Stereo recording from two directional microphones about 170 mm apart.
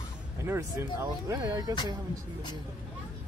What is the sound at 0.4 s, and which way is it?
Speech, 15° right (ahead or behind).